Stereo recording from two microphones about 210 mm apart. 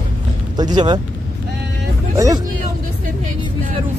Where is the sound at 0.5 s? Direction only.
20° right (ahead or behind).